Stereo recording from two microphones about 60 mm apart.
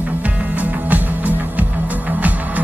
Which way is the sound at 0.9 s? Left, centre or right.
Right.